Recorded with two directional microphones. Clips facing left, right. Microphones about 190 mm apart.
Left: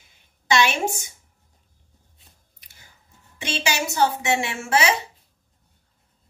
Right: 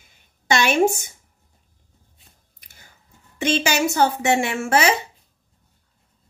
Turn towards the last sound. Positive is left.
turn(degrees=-50)  # may be behind; listen again after turning